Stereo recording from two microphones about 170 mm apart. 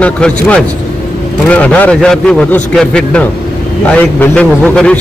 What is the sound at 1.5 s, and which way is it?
A man's voice, 10° left (ahead or behind).